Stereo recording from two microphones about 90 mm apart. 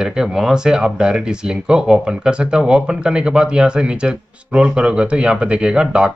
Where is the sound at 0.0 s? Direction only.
5° right (ahead or behind).